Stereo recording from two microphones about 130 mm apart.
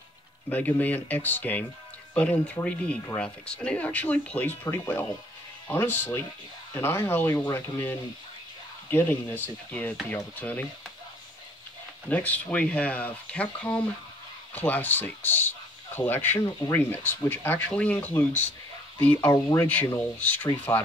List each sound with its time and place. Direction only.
0.5 s speech: 15° left (ahead or behind)
12.1 s speech: 10° left (ahead or behind)
20.7 s speech: 25° left (ahead or behind)